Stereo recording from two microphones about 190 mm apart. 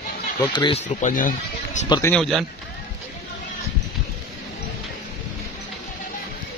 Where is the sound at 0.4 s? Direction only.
25° left (ahead or behind).